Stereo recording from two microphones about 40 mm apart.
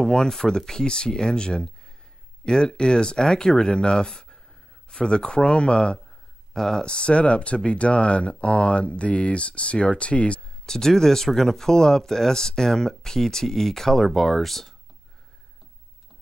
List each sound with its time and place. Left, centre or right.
0.0 s speech: centre
6.5 s speech: centre; by 10.4 s left
10.6 s speech: centre